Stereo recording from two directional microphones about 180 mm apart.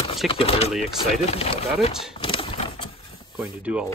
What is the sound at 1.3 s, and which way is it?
Speech, 35° left (ahead or behind).